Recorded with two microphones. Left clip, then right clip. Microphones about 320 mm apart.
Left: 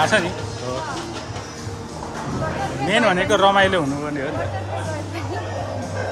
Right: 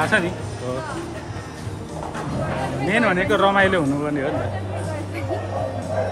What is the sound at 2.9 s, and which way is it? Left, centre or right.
Speech, centre.